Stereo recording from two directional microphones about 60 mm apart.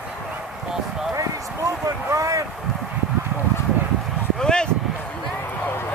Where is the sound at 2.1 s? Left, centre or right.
Right.